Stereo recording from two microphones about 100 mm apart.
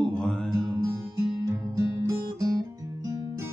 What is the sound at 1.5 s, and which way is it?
Music, 30° right (ahead or behind).